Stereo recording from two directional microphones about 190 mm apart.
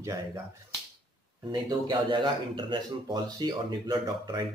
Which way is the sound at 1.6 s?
20° right (ahead or behind).